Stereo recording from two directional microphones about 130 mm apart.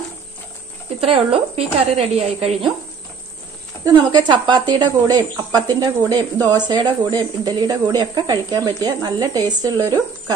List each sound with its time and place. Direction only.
1.0 s speech: 50° right (ahead or behind)
3.8 s a woman's voice: 35° right (ahead or behind)